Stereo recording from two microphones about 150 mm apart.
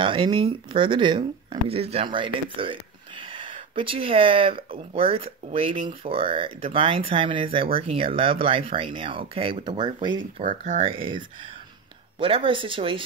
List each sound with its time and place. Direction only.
0.0 s speech: 35° right (ahead or behind)
10.4 s speech: 60° right (ahead or behind)
10.8 s speech: 35° right (ahead or behind)